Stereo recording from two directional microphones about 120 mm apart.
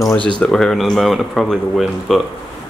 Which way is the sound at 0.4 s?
5° left (ahead or behind).